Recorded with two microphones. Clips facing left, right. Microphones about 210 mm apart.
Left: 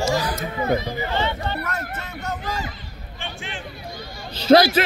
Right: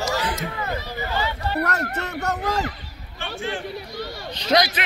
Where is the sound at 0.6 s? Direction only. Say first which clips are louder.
Left 6 dB; 15° left (ahead or behind).